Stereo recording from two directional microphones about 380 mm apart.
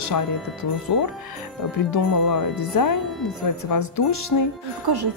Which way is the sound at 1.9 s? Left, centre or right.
Left.